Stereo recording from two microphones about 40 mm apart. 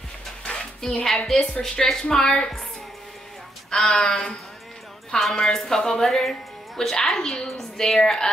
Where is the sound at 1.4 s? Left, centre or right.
Centre.